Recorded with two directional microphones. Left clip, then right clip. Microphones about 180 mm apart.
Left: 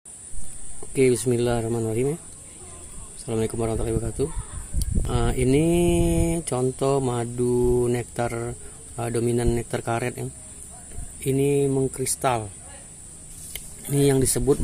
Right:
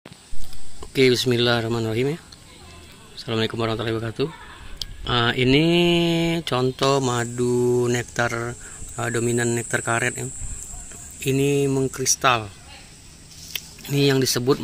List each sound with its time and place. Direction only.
0.9 s speech: 5° left (ahead or behind)
3.2 s speech: 5° left (ahead or behind)
7.4 s speech: 15° right (ahead or behind)
7.8 s speech: centre (ahead or behind)
13.5 s a sound: 10° left (ahead or behind)